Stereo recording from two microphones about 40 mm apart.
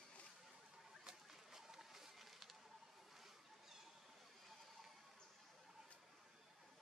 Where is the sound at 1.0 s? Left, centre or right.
Centre.